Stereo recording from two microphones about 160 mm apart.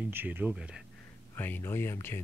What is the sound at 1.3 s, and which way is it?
Speech, 15° left (ahead or behind).